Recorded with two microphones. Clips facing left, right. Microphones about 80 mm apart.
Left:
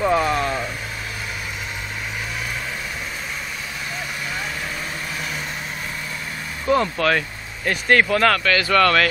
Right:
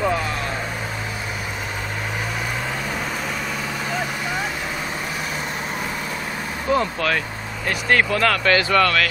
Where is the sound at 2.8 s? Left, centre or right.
Right.